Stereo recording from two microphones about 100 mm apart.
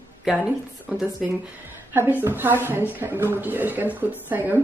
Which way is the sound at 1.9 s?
20° right (ahead or behind).